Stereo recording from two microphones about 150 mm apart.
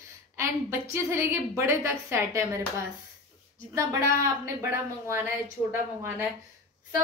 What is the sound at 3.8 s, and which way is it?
A woman's voice, 20° right (ahead or behind).